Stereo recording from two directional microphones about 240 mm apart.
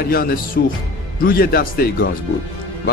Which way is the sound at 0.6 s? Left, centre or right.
Left.